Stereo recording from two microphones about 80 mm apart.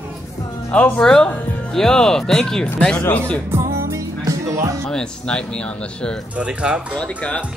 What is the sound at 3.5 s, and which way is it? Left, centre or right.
Music, right.